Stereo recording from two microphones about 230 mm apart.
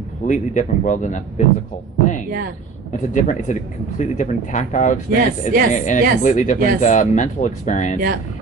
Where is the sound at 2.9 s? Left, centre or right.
Left.